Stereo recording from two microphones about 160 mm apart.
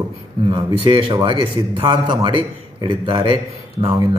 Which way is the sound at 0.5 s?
30° right (ahead or behind).